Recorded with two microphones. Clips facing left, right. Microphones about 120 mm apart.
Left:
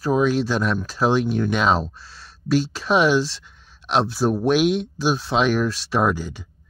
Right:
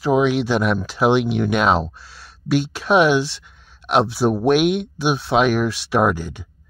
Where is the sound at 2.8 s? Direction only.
5° right (ahead or behind).